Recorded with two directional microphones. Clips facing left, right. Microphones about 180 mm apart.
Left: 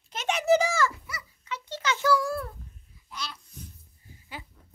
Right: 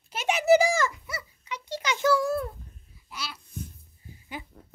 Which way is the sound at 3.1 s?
10° right (ahead or behind).